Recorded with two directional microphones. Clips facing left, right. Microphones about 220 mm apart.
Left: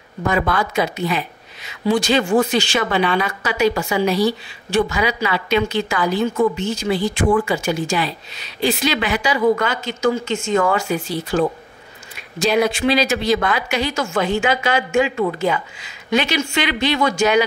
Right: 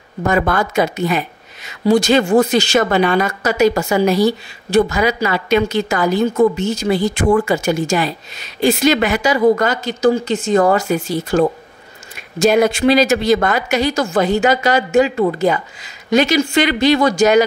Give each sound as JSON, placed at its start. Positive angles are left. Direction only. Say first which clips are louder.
{"t": 0.3, "sound": "a woman's voice", "louder": "right 3 dB", "side_deg": -45}